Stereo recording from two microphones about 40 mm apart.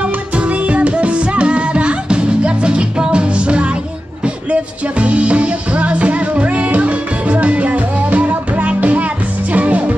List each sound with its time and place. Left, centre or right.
0.0 s music: right